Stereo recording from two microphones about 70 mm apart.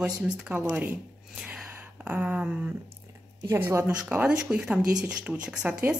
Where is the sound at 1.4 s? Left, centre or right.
Centre.